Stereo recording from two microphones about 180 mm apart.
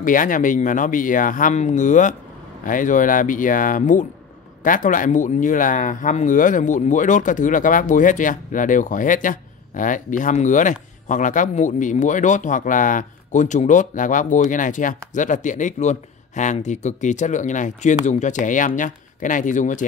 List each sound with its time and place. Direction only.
0.0 s speech: 50° left (ahead or behind)